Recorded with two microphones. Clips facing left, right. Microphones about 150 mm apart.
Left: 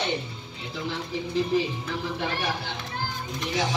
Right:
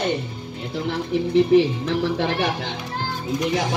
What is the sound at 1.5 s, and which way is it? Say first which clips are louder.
Music: right 10 dB; 70° right (ahead or behind).